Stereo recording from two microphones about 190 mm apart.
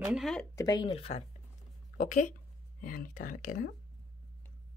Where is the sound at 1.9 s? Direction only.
45° left (ahead or behind).